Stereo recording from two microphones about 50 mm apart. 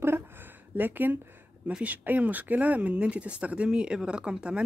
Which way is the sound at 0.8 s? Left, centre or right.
Right.